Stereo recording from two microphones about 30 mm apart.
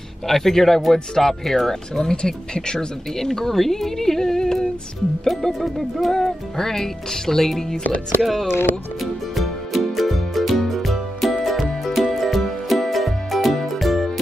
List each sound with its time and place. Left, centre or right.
0.3 s speech: centre
1.7 s speech: left
3.2 s speech: centre
5.2 s music: centre
6.2 s speech: centre
9.0 s music: centre